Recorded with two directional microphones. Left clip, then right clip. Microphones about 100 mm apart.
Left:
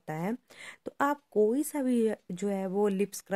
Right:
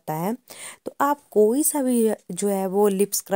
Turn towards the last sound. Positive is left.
turn(degrees=-55)  # may be behind; listen again after turning